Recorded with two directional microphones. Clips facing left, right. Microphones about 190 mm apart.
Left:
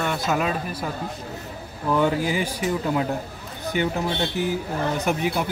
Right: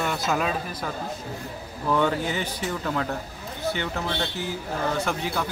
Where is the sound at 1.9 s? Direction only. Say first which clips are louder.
Left 2 dB; 5° left (ahead or behind).